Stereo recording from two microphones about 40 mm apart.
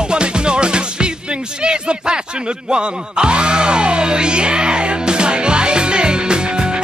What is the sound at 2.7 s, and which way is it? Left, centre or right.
Music, right.